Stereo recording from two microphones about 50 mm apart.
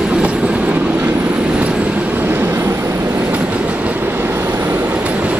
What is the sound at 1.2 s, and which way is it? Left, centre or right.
Vehicle, right.